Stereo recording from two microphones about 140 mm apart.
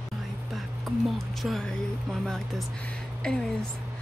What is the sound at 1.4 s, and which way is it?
Speech, centre (ahead or behind).